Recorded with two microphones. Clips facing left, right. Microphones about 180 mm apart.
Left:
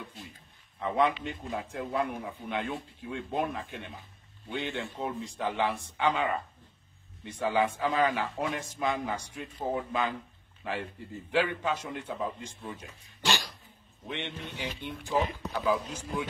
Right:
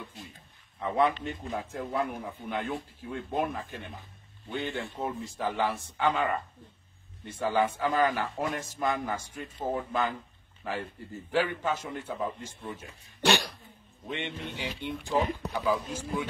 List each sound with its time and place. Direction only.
0.7 s a man's voice: centre (ahead or behind)
13.2 s cough: 65° right (ahead or behind)
14.0 s speech: 10° right (ahead or behind)